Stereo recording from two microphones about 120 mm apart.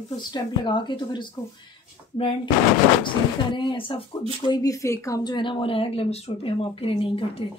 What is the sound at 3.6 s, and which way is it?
Speech, 45° left (ahead or behind).